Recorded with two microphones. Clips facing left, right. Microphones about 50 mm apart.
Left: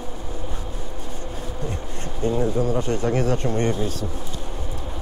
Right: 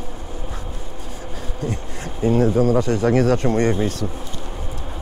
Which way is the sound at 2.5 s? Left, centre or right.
Right.